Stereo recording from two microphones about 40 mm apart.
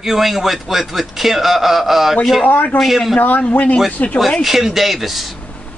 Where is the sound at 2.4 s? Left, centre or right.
Left.